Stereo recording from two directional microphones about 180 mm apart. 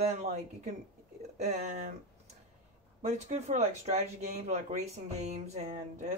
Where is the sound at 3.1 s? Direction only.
40° right (ahead or behind).